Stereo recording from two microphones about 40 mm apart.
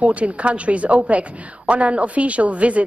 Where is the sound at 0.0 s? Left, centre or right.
Right.